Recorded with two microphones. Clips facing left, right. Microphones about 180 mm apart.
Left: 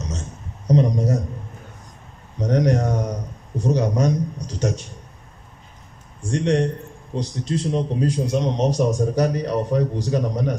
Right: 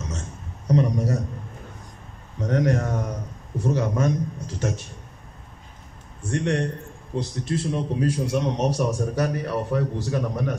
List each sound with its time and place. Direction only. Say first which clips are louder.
0.7 s a man's voice: left 3 dB; 20° left (ahead or behind)
2.3 s a man's voice: left 3 dB; 20° left (ahead or behind)
6.3 s a man's voice: left 4 dB; 20° left (ahead or behind)